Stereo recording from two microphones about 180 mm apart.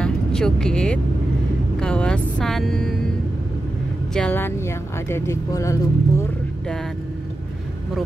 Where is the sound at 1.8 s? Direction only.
5° left (ahead or behind).